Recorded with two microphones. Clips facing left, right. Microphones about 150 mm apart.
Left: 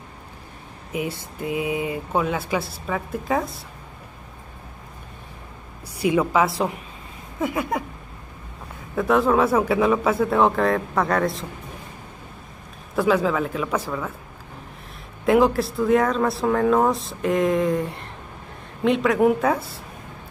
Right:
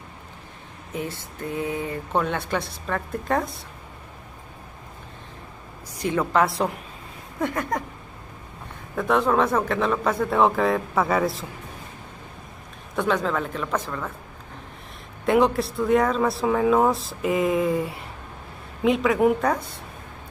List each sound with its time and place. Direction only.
0.9 s speech: 10° left (ahead or behind)
5.9 s speech: 10° left (ahead or behind)
8.9 s speech: centre (ahead or behind)
12.9 s speech: 5° left (ahead or behind)
15.2 s speech: centre (ahead or behind)